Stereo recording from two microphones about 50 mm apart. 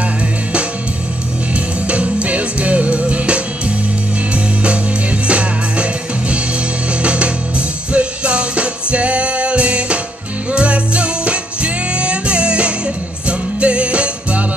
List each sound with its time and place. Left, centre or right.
1.9 s music: right
5.2 s music: right
6.9 s music: right